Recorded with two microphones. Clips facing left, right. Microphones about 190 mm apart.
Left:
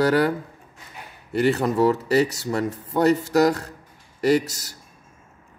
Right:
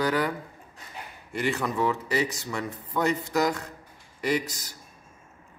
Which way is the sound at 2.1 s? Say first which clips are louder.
Left 8 dB; 70° left (ahead or behind).